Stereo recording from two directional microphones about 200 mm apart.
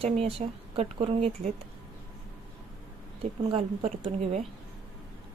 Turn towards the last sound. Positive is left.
turn(degrees=-25)  # may be behind; listen again after turning